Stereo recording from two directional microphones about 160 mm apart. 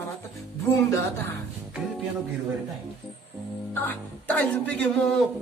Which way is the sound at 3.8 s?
10° left (ahead or behind).